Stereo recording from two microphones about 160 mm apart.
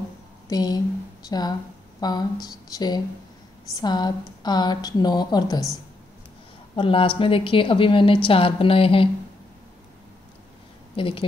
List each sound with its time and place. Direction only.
0.5 s a woman's voice: 25° left (ahead or behind)
6.7 s a woman's voice: 35° left (ahead or behind)
11.0 s a woman's voice: 35° left (ahead or behind)